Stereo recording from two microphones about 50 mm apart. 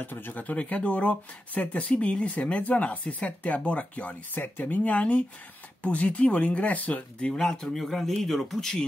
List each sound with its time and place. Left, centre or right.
0.0 s speech: left
7.2 s speech: centre
7.6 s speech: centre